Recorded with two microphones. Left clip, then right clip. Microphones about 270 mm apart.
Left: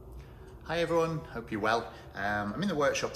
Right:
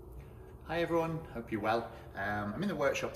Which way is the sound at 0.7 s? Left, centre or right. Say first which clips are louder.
Left 4 dB; centre.